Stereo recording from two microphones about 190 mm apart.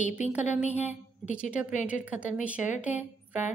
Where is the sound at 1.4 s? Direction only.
5° right (ahead or behind).